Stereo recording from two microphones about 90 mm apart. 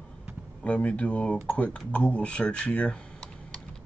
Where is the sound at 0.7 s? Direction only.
15° left (ahead or behind).